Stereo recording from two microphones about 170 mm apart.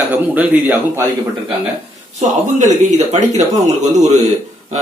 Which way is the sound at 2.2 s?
45° right (ahead or behind).